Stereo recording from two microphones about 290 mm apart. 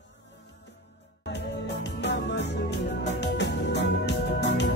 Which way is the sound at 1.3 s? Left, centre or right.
Left.